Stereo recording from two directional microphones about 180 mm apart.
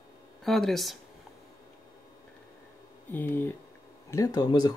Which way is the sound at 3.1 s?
10° left (ahead or behind).